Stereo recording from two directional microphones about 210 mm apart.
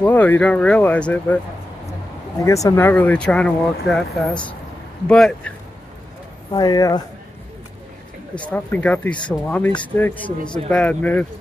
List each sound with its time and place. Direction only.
0.0 s speech: 5° left (ahead or behind)
2.4 s speech: 15° left (ahead or behind)
6.5 s speech: 20° left (ahead or behind)
8.4 s speech: 5° left (ahead or behind)